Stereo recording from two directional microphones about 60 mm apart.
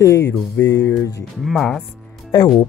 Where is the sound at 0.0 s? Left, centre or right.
Left.